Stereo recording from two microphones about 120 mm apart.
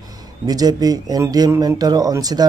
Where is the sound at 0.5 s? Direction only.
30° right (ahead or behind).